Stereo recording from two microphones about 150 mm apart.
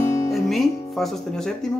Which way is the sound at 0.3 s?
Centre (ahead or behind).